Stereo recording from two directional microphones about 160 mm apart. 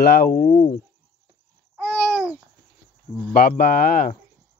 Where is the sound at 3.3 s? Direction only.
65° left (ahead or behind).